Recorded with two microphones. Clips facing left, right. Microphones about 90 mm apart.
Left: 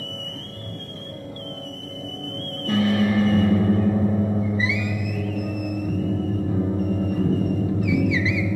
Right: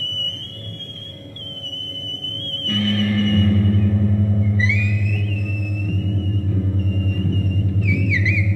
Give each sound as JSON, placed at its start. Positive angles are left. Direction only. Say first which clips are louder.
{"t": 2.3, "sound": "music", "louder": "left 2 dB", "side_deg": 20}